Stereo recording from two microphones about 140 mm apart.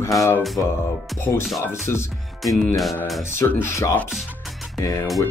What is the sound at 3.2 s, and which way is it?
Speech, 20° left (ahead or behind).